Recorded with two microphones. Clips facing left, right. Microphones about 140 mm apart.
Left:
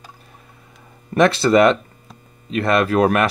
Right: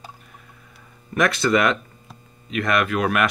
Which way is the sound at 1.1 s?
30° left (ahead or behind).